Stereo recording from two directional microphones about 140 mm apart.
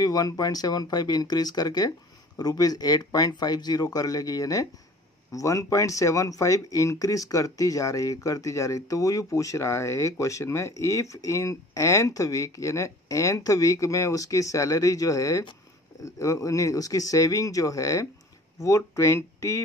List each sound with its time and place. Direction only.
0.0 s speech: 25° left (ahead or behind)